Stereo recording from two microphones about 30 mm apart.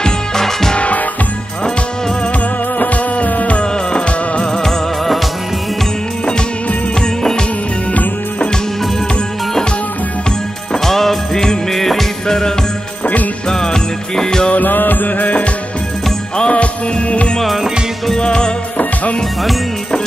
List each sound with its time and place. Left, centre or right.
0.0 s music: centre
2.8 s music: left
3.5 s music: left
4.6 s music: centre
7.0 s music: left
7.9 s music: left
10.7 s music: centre
13.0 s music: left
13.5 s music: left
14.5 s music: left
16.3 s music: left
17.5 s music: centre
18.2 s music: left